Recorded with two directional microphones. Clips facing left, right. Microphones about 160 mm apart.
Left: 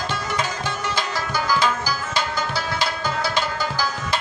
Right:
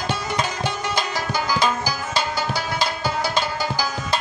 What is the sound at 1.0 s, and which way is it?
Music, 15° right (ahead or behind).